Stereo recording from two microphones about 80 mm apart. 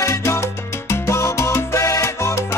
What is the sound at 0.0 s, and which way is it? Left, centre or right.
Salsa music, left.